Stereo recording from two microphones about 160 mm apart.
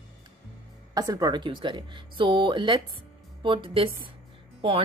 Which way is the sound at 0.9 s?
20° right (ahead or behind).